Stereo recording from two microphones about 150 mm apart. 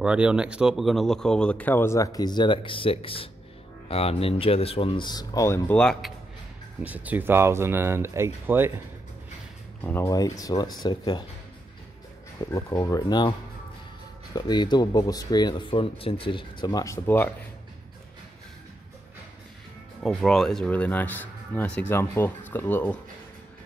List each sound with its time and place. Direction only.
0.0 s speech: 5° right (ahead or behind); by 5.6 s 25° left (ahead or behind)
5.7 s speech: 5° left (ahead or behind)
6.8 s speech: 10° right (ahead or behind)
10.0 s speech: 25° left (ahead or behind)
12.4 s speech: 20° left (ahead or behind)
14.3 s speech: 30° left (ahead or behind)
20.0 s speech: 5° left (ahead or behind)